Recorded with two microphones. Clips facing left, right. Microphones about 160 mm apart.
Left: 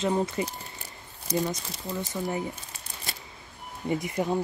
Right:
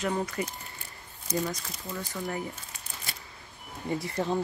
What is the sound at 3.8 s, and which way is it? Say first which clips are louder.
Speech: left 2 dB; 20° left (ahead or behind).